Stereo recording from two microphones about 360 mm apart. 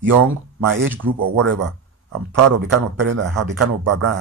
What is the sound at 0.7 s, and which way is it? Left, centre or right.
A man's voice, right.